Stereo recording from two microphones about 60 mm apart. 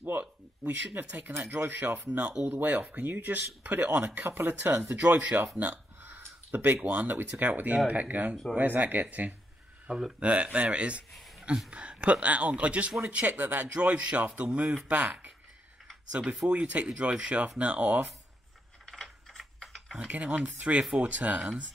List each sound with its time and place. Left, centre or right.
0.0 s a sound: right
1.4 s speech: right
2.4 s speech: right
4.9 s speech: right
5.9 s speech: right
9.9 s speech: centre
11.1 s a sound: centre
11.7 s speech: right
18.9 s mechanisms: centre
20.1 s speech: right